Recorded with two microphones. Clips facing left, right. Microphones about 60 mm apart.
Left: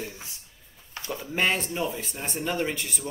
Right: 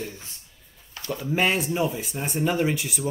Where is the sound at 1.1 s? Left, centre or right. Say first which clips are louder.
Right 3 dB; centre.